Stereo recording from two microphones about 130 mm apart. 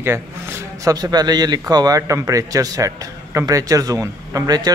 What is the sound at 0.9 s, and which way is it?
A man's voice, 30° right (ahead or behind).